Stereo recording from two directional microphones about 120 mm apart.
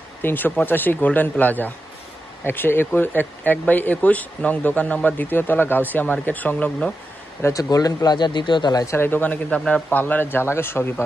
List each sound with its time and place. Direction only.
0.2 s speech: 15° left (ahead or behind)
7.4 s speech: 30° left (ahead or behind)
8.9 s speech: 15° left (ahead or behind)